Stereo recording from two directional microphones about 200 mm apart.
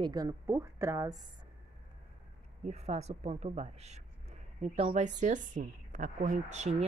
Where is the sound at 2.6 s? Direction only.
35° right (ahead or behind).